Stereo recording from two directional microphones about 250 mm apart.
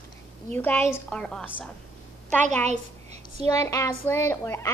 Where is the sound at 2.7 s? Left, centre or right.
Right.